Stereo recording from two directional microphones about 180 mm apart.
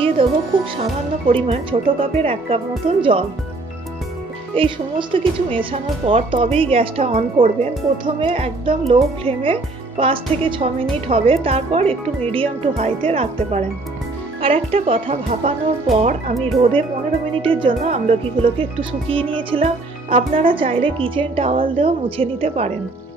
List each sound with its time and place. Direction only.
0.2 s speech: 30° right (ahead or behind)
4.6 s speech: 30° right (ahead or behind)
17.4 s speech: 30° right (ahead or behind)